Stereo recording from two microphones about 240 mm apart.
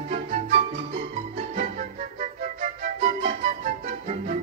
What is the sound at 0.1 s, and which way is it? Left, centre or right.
Music, right.